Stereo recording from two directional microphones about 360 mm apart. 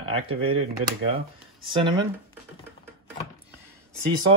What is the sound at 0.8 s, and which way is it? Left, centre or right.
Speech, right.